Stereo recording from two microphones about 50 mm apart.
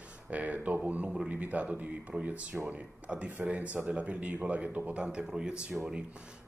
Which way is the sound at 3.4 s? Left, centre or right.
Right.